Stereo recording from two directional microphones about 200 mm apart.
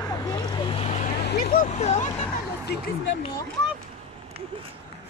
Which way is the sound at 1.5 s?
40° left (ahead or behind).